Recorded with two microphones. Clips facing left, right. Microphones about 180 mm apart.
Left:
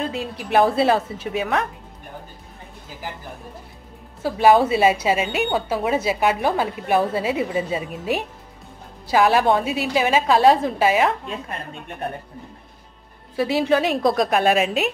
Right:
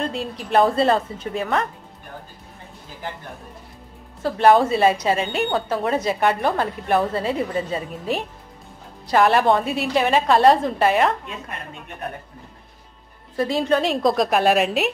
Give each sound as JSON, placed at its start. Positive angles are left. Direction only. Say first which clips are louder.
{"t": 0.0, "sound": "a woman's voice", "louder": "even", "side_deg": 0}
{"t": 4.2, "sound": "a woman's voice", "louder": "even", "side_deg": 5}
{"t": 13.4, "sound": "a woman's voice", "louder": "left 1 dB", "side_deg": 5}